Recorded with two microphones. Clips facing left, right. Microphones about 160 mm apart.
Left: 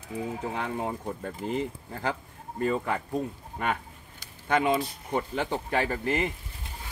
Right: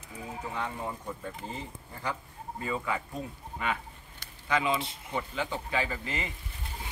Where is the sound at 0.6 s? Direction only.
65° left (ahead or behind); by 2.1 s 80° left.